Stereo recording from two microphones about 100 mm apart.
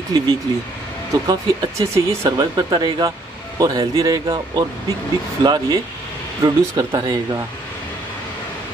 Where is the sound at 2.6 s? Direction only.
45° right (ahead or behind).